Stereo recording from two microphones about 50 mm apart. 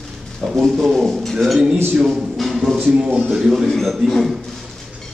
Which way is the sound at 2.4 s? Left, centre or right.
Centre.